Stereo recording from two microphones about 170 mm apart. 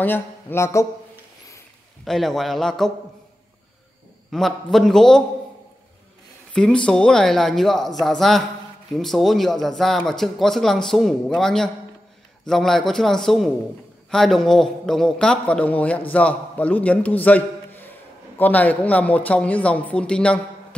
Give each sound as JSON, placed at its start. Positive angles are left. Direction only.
{"t": 0.0, "sound": "speech", "side_deg": 10}
{"t": 2.0, "sound": "speech", "side_deg": 0}
{"t": 4.3, "sound": "speech", "side_deg": 0}
{"t": 6.5, "sound": "a man's voice", "side_deg": 5}